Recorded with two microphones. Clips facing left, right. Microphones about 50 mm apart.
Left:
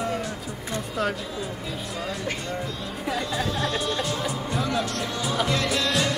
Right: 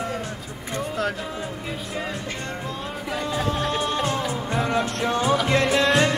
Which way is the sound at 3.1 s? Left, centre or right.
Right.